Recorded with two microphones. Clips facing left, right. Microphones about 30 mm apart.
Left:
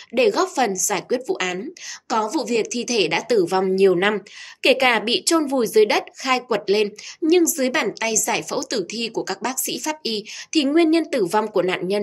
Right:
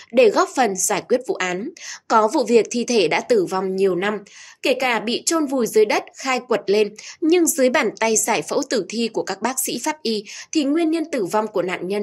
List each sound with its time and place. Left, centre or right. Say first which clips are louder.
0.1 s speech: right 3 dB; centre
2.2 s a woman's voice: right 6 dB; centre
3.0 s a woman's voice: right 2 dB; centre
3.3 s a woman's voice: left 2 dB; left; by 6.9 s centre
7.4 s speech: right 3 dB; centre
10.6 s speech: left 2 dB; left
11.1 s speech: left 1 dB; left